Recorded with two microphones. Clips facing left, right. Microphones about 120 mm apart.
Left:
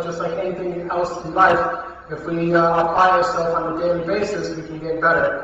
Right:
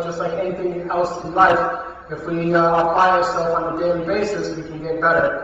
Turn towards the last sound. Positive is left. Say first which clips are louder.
# right 1 dB
turn(degrees=0)  # may be behind; listen again after turning